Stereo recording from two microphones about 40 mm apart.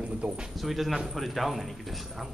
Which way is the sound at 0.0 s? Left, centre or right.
Right.